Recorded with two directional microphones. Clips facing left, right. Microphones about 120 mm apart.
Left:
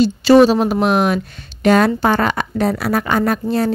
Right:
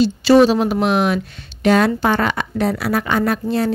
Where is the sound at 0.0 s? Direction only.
45° left (ahead or behind).